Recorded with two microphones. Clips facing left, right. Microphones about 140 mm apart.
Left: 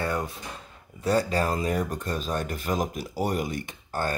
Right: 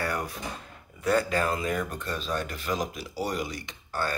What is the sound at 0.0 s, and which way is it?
Drawer open or close, 25° left (ahead or behind).